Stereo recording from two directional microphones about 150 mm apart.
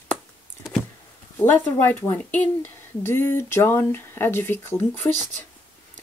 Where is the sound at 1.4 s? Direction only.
10° left (ahead or behind).